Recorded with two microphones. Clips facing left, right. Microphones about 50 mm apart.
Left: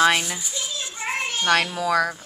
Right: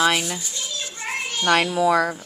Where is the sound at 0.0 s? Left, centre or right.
Centre.